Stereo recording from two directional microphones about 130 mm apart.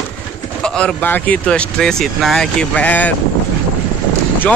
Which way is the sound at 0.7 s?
10° left (ahead or behind).